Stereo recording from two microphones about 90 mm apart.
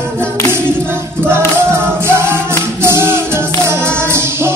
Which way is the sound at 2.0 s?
30° right (ahead or behind).